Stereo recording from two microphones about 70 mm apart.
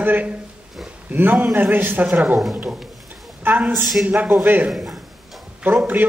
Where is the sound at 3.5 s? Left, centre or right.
Right.